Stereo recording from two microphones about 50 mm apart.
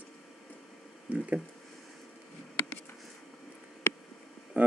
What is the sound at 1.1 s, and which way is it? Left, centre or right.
Speech, right.